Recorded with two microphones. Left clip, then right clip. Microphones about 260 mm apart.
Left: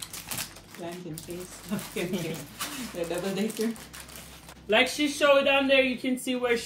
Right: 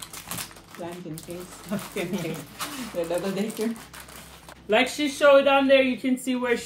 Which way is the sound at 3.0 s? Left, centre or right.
Centre.